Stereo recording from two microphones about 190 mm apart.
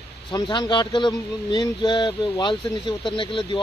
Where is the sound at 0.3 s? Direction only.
25° left (ahead or behind).